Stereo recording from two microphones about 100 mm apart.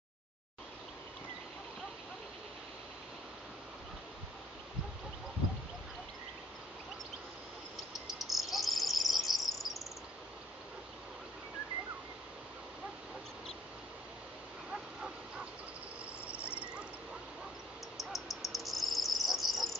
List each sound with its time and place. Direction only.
8.1 s cricket: centre (ahead or behind)
16.3 s a sound: 25° left (ahead or behind)
17.9 s cricket: centre (ahead or behind)